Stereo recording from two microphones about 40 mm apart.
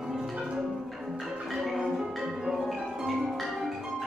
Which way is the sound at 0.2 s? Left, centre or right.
Centre.